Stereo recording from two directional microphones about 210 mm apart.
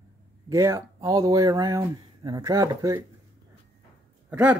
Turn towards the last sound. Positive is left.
turn(degrees=-5)  # may be behind; listen again after turning